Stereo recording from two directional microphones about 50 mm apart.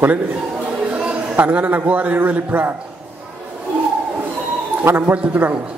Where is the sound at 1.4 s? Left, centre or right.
Right.